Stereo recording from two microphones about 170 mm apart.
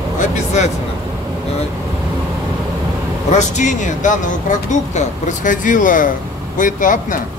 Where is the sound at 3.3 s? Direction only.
45° left (ahead or behind).